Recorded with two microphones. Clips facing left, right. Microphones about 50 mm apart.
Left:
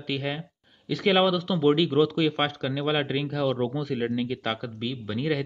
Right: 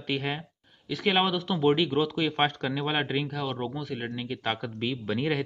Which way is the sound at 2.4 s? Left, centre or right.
Right.